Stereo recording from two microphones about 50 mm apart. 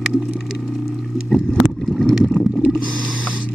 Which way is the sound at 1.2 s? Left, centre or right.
Centre.